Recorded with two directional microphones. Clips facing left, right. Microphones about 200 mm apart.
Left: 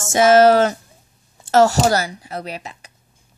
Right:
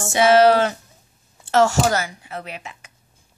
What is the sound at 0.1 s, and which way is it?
A woman's voice, 45° left (ahead or behind).